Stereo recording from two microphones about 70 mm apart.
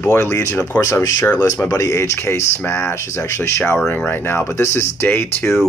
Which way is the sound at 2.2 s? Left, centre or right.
Left.